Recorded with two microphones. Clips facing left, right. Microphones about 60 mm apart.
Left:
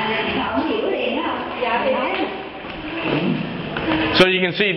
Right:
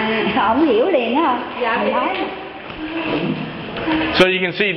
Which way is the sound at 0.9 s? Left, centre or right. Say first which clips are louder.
Right 6 dB; right.